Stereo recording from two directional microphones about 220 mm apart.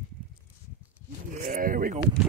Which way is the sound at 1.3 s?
35° right (ahead or behind).